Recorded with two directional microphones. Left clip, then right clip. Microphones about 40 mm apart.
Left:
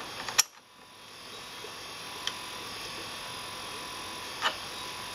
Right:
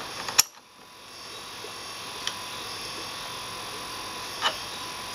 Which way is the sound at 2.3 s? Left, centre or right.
Centre.